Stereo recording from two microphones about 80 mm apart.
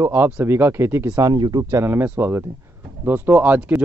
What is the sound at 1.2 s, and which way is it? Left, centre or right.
Speech, right.